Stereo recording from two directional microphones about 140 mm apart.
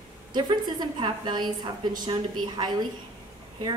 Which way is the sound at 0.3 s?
30° right (ahead or behind).